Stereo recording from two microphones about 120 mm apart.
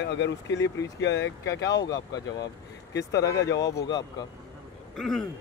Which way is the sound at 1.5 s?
30° left (ahead or behind).